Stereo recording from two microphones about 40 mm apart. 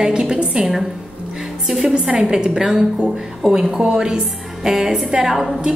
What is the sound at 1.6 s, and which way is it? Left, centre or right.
A woman's voice, centre.